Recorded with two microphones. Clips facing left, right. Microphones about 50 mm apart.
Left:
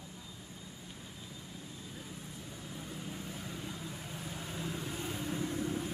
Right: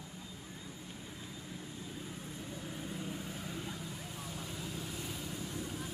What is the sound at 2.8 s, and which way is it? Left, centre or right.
Vehicle, centre.